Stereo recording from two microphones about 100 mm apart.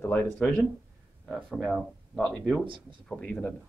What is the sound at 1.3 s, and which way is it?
Speech, centre (ahead or behind).